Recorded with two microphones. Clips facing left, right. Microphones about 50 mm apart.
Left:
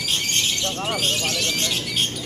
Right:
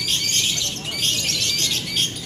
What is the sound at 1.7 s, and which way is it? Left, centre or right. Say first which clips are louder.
Bird: even; centre.